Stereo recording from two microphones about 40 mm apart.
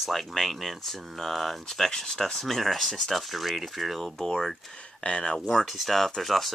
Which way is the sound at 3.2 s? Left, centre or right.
Centre.